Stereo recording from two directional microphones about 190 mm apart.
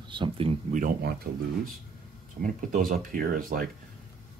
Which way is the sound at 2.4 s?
45° right (ahead or behind).